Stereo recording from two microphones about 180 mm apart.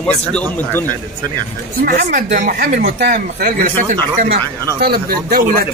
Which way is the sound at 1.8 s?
55° right (ahead or behind).